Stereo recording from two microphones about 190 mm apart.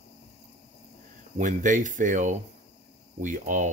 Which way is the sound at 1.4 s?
40° right (ahead or behind).